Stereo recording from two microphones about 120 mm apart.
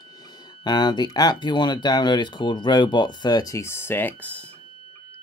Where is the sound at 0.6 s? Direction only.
35° left (ahead or behind); by 4.4 s 15° left (ahead or behind).